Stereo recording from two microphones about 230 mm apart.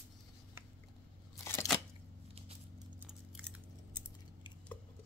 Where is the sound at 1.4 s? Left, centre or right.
Centre.